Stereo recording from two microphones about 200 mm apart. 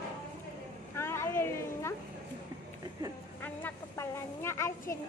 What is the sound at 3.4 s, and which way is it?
A woman's voice, 10° left (ahead or behind).